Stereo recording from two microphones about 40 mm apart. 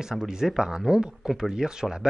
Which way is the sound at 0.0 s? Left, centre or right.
Centre.